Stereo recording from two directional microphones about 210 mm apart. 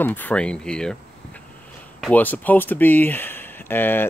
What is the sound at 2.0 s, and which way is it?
Speech, 10° left (ahead or behind).